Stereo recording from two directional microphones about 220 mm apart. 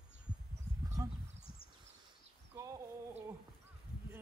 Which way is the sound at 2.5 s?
15° right (ahead or behind).